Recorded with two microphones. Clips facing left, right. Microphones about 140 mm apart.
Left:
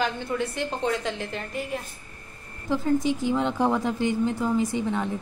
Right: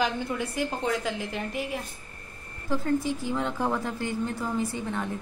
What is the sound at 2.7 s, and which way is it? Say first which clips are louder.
A woman's voice: left 3 dB; 20° left (ahead or behind).